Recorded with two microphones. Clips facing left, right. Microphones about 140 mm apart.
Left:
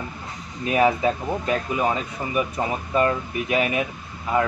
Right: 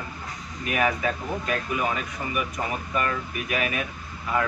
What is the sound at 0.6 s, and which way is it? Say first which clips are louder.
Speech: left 6 dB; 25° left (ahead or behind).